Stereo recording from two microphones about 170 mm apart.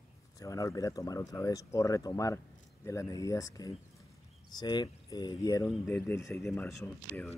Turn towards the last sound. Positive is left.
turn(degrees=15)  # may be behind; listen again after turning